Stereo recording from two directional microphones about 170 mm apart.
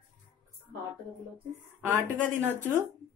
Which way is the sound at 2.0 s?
15° right (ahead or behind).